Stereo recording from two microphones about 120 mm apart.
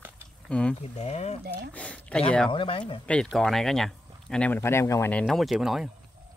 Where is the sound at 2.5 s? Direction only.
45° left (ahead or behind).